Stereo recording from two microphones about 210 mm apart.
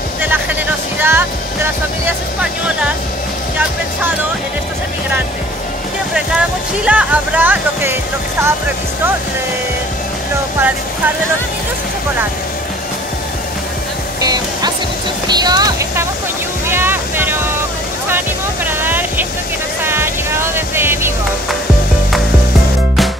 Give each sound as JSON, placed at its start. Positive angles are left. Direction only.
{"t": 1.0, "sound": "music", "side_deg": -10}
{"t": 6.8, "sound": "speech", "side_deg": -5}
{"t": 14.2, "sound": "music", "side_deg": -20}
{"t": 15.2, "sound": "a sound", "side_deg": -20}
{"t": 16.6, "sound": "music", "side_deg": -10}
{"t": 18.7, "sound": "a sound", "side_deg": -10}
{"t": 19.8, "sound": "music", "side_deg": -10}